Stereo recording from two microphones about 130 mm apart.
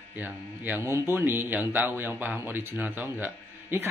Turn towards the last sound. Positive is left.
turn(degrees=-15)  # may be behind; listen again after turning